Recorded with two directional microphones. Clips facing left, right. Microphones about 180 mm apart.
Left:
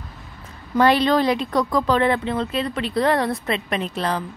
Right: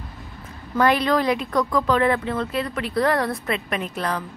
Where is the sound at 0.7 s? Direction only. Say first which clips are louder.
Left 2 dB; 30° left (ahead or behind).